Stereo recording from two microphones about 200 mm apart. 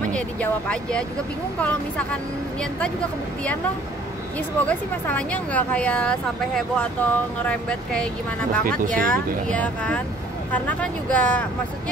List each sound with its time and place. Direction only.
0.1 s speech: 5° left (ahead or behind)
4.6 s speech: 5° left (ahead or behind)
8.6 s speech: 45° right (ahead or behind)
8.9 s speech: 5° left (ahead or behind)